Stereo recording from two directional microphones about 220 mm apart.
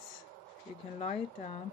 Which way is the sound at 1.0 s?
30° left (ahead or behind).